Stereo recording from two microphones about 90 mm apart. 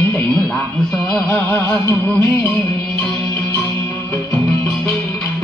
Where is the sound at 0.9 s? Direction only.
5° left (ahead or behind).